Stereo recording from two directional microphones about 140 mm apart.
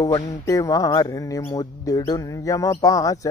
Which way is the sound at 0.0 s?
25° left (ahead or behind).